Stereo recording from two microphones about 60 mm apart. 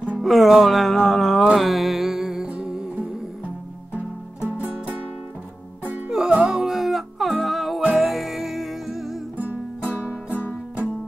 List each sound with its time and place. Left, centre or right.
0.2 s speech: centre
1.5 s music: centre
2.4 s music: centre
6.0 s music: centre